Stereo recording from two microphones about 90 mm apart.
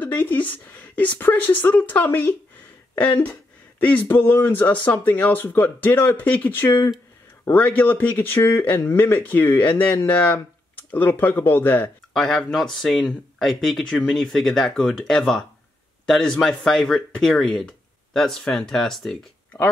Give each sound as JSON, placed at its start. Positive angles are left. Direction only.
{"t": 0.0, "sound": "speech", "side_deg": 20}
{"t": 12.1, "sound": "speech", "side_deg": 5}